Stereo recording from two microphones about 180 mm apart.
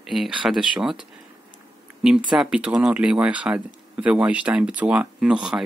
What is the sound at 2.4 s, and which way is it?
Speech, 5° right (ahead or behind).